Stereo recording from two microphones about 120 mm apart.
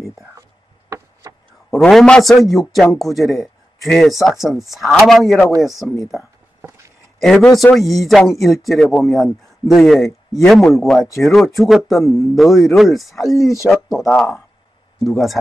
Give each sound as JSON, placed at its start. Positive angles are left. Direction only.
{"t": 0.8, "sound": "a sound", "side_deg": -30}
{"t": 1.8, "sound": "speech", "side_deg": 5}
{"t": 7.2, "sound": "speech", "side_deg": 0}
{"t": 13.3, "sound": "speech", "side_deg": 25}
{"t": 13.7, "sound": "speech", "side_deg": 0}